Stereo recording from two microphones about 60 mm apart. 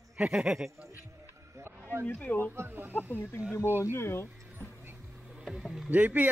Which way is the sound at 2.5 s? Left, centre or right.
Right.